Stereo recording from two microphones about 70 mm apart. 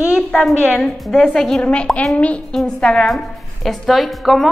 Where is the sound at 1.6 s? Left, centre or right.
Centre.